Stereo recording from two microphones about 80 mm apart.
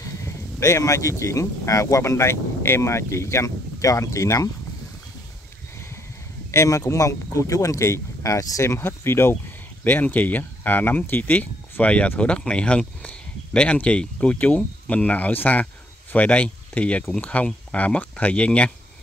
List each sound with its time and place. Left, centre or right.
0.6 s speech: left
6.5 s speech: left
9.8 s speech: left